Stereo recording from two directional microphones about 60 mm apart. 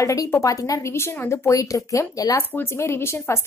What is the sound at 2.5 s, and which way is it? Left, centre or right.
Speech, left.